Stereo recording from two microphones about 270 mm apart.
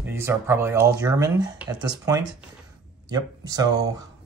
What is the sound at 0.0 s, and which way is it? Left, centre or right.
Speech, centre.